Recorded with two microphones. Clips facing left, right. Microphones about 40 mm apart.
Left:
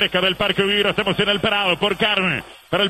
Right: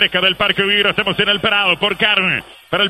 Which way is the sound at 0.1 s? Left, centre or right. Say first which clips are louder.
Right 4 dB; centre.